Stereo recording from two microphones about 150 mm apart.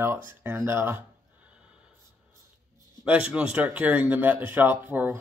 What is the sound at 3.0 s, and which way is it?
Speech, 10° right (ahead or behind).